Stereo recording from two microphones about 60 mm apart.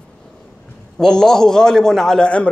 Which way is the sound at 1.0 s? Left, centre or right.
Centre.